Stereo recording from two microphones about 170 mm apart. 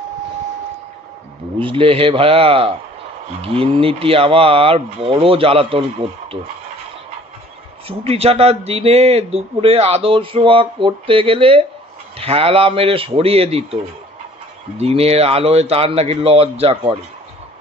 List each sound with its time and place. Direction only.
1.6 s a man's voice: 30° right (ahead or behind)
8.0 s a man's voice: 35° right (ahead or behind)
14.8 s a man's voice: 35° right (ahead or behind)